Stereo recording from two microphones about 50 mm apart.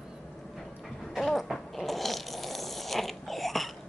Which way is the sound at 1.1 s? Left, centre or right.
Centre.